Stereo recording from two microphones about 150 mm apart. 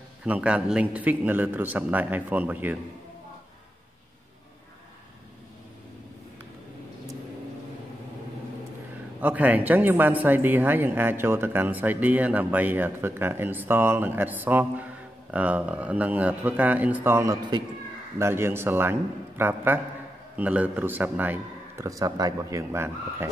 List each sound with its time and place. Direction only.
0.2 s speech: 10° right (ahead or behind)
9.2 s speech: 10° right (ahead or behind)